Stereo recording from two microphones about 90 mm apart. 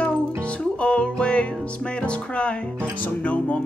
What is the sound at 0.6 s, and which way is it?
Music, 10° left (ahead or behind).